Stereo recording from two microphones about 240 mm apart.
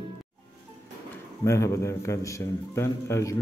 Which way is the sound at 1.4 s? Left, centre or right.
Centre.